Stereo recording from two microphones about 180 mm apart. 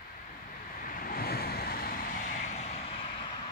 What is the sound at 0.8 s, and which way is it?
Vehicle, 50° left (ahead or behind).